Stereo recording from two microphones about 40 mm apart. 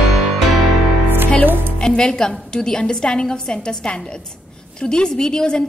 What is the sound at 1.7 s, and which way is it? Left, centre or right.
A woman's voice, left.